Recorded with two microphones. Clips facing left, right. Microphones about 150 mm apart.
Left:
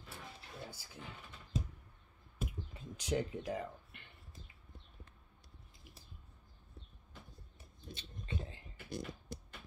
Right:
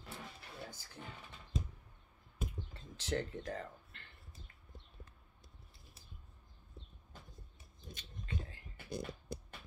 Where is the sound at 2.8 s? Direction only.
10° left (ahead or behind).